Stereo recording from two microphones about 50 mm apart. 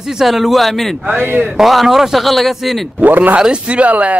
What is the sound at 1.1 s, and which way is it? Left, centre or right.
Speech, right.